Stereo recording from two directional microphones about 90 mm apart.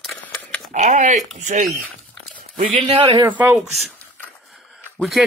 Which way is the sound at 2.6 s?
90° right.